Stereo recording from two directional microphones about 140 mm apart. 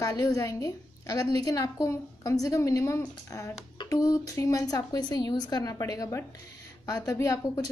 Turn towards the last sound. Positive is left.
turn(degrees=25)  # may be behind; listen again after turning